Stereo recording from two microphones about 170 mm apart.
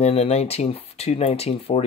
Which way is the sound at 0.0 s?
40° left (ahead or behind).